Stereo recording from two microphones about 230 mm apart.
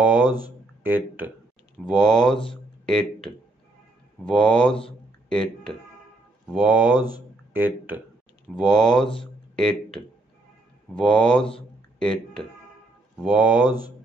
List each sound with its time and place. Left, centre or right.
0.8 s speech: centre
2.5 s a sound: centre
4.2 s speech: centre
7.0 s speech: centre
7.5 s speech: centre